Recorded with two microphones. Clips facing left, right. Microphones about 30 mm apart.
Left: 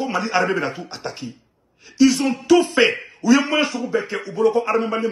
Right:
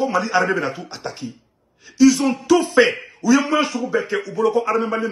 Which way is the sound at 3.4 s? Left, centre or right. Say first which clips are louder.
Right 1 dB; left.